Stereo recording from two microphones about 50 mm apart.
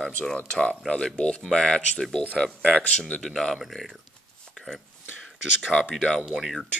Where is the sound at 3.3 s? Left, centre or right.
Centre.